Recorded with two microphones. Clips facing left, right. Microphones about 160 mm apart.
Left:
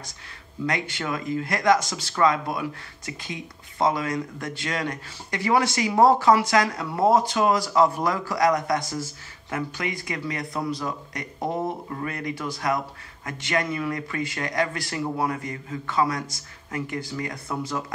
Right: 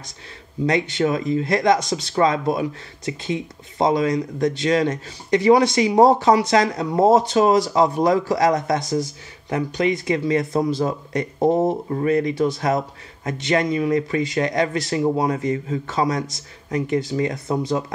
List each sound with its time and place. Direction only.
0.7 s speech: 20° right (ahead or behind)